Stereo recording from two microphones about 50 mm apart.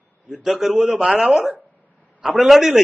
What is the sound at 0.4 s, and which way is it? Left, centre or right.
A man's voice, centre.